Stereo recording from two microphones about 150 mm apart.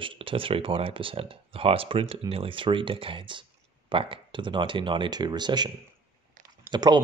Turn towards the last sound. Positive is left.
turn(degrees=-30)  # may be behind; listen again after turning